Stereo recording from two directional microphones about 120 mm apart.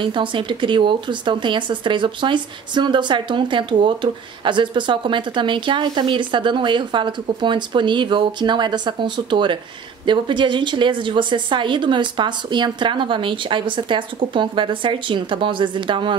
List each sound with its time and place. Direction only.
0.0 s a woman's voice: 45° right (ahead or behind)